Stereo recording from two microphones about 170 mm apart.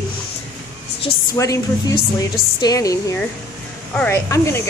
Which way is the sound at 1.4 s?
20° left (ahead or behind).